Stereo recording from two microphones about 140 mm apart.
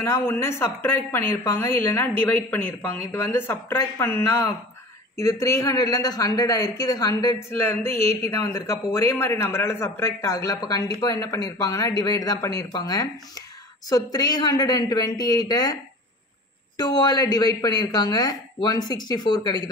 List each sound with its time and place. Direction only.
0.0 s a man's voice: 20° left (ahead or behind)